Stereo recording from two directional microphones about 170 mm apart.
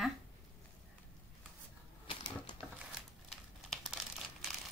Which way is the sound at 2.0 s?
30° left (ahead or behind).